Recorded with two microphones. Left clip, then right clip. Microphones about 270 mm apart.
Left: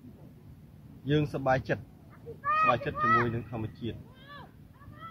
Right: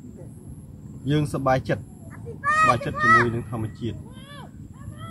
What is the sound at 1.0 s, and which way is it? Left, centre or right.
Speech, centre.